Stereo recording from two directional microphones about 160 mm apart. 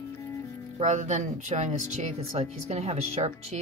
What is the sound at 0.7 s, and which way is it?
Speech, 45° right (ahead or behind).